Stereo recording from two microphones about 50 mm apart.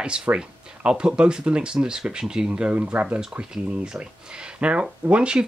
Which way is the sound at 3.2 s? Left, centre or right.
Centre.